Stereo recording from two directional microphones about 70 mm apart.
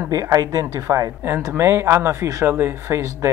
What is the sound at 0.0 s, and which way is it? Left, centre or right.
Speech, right.